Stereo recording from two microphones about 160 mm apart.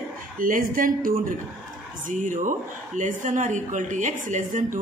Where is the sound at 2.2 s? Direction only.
55° right (ahead or behind).